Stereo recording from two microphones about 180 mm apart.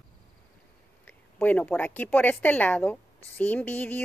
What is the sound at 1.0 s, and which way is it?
Speech, 10° left (ahead or behind).